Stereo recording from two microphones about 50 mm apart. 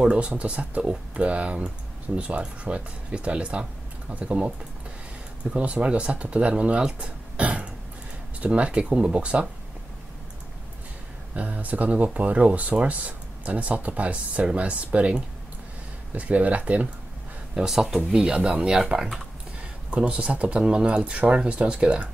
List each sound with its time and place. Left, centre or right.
0.3 s speech: right
7.3 s throat clearing: right
8.4 s speech: right
11.3 s speech: right
17.6 s speech: centre
18.1 s speech: centre